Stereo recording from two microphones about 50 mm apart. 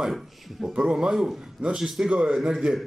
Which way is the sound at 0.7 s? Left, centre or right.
Centre.